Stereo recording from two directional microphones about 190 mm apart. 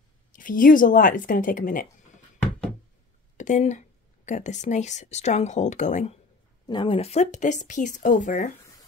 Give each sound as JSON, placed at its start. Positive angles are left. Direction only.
{"t": 0.3, "sound": "speech", "side_deg": 45}
{"t": 3.3, "sound": "speech", "side_deg": 40}
{"t": 6.7, "sound": "speech", "side_deg": 25}